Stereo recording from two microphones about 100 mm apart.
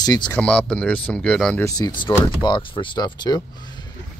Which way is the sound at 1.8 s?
50° left (ahead or behind).